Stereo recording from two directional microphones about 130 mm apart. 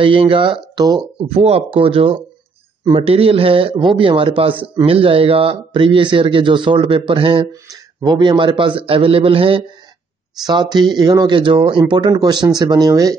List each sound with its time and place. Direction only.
0.0 s a man's voice: 40° right (ahead or behind)
1.2 s a man's voice: 50° right (ahead or behind); by 13.1 s 25° right (ahead or behind)